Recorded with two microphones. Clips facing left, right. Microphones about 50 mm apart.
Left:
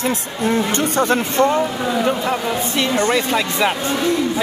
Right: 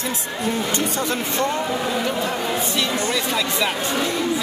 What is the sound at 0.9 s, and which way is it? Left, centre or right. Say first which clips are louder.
Speech: left 7 dB; left.